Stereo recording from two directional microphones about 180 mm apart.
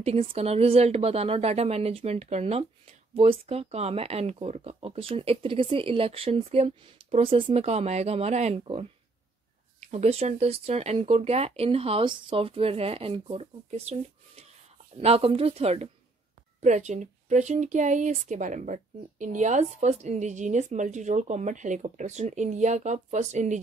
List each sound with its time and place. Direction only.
0.0 s speech: 35° right (ahead or behind)